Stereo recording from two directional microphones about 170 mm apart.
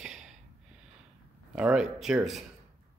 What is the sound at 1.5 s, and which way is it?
Speech, 5° right (ahead or behind).